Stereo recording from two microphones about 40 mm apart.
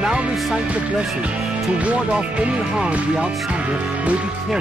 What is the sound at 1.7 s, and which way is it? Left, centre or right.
Speech, right.